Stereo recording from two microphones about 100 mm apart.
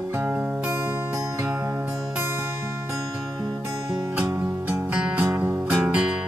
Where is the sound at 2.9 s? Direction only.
35° right (ahead or behind).